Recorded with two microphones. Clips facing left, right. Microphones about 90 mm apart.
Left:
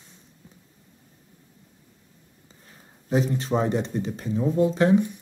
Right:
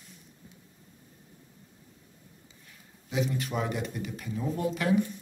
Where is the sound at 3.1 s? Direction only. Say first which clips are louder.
Left 7 dB; 35° left (ahead or behind).